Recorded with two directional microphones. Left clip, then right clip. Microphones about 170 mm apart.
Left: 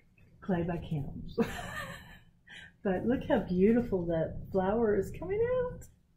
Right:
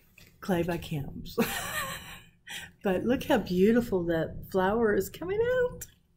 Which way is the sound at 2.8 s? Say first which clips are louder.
Right 4 dB; 35° right (ahead or behind).